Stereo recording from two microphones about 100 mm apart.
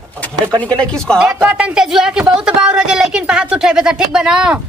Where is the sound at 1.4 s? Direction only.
10° right (ahead or behind).